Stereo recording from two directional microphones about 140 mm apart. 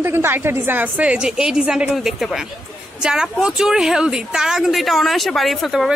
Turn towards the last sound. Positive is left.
turn(degrees=0)  # may be behind; listen again after turning